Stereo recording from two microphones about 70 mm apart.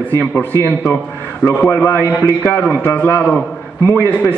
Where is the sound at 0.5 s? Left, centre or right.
Left.